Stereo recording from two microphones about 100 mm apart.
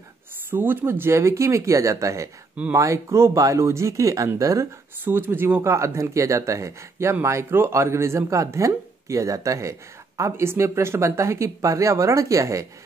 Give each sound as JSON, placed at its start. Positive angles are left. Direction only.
{"t": 0.5, "sound": "speech", "side_deg": -20}
{"t": 5.0, "sound": "speech", "side_deg": -20}